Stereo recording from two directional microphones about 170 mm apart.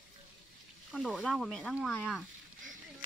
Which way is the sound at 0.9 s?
Centre (ahead or behind).